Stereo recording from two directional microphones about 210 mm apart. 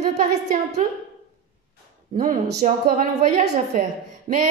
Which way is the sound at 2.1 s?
35° right (ahead or behind).